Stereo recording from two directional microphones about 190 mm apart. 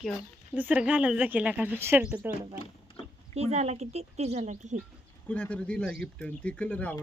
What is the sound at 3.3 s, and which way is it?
Speech, 35° right (ahead or behind).